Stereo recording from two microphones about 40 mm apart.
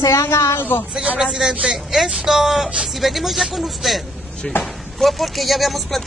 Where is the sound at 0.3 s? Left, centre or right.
Left.